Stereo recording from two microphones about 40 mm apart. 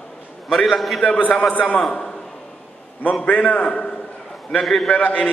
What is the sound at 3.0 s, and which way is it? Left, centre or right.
Speech, left.